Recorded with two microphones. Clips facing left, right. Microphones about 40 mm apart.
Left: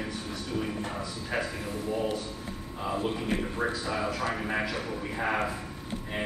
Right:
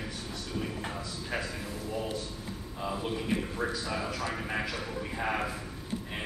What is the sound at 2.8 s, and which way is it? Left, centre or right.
A man's voice, centre.